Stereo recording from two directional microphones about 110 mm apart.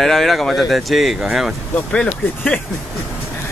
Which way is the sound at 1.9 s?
10° left (ahead or behind).